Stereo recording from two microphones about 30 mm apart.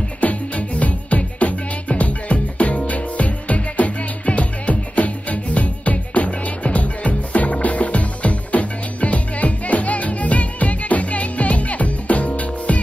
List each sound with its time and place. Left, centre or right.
0.2 s music: left